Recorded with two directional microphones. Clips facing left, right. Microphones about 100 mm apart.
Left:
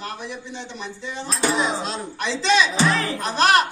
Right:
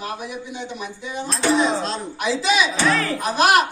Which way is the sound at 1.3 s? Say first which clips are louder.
Right 3 dB; centre (ahead or behind).